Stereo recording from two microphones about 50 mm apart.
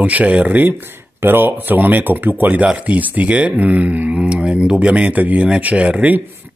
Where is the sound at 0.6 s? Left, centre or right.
Right.